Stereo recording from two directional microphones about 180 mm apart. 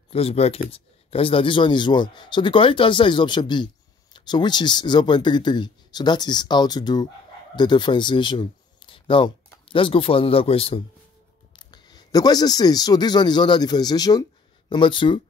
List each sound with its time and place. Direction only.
0.1 s speech: 35° left (ahead or behind)